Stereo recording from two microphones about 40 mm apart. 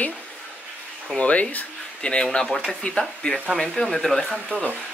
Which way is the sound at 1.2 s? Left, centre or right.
Left.